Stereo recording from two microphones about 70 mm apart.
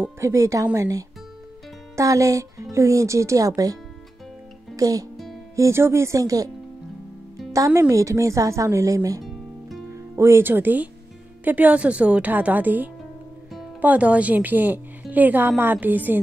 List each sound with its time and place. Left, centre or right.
0.2 s speech: right
4.7 s speech: right
5.1 s music: centre
5.6 s speech: right
7.5 s speech: right
9.2 s music: centre
9.9 s music: right
10.4 s a woman's voice: right